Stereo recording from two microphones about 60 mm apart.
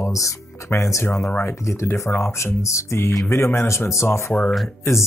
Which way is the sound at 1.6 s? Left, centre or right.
Left.